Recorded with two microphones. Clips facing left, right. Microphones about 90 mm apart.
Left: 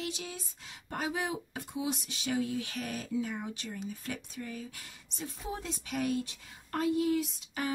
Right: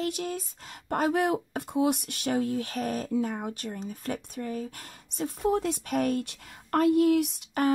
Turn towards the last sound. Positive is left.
turn(degrees=-60)  # may be behind; listen again after turning